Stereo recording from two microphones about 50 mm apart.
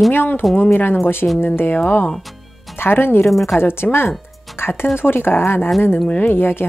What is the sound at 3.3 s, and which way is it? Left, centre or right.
Speech, centre.